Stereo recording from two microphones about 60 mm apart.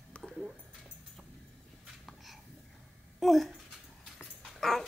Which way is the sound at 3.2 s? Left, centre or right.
Centre.